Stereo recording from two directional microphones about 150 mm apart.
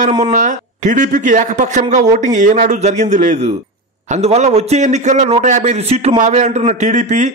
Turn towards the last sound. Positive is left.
turn(degrees=-55)  # may be behind; listen again after turning